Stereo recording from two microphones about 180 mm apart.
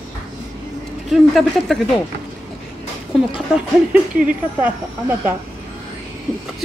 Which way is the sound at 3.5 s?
5° right (ahead or behind).